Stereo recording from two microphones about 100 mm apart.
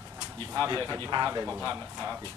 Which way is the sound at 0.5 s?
35° right (ahead or behind).